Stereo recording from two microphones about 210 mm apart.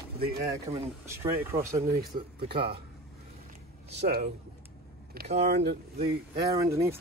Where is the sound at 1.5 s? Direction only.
15° right (ahead or behind).